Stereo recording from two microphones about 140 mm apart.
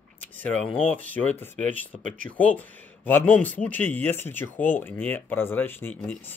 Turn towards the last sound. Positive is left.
turn(degrees=10)  # may be behind; listen again after turning